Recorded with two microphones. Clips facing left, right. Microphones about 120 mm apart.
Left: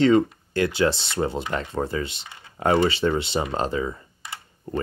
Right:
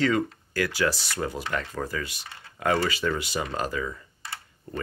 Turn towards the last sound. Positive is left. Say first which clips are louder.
# left 4 dB
turn(degrees=30)  # may be behind; listen again after turning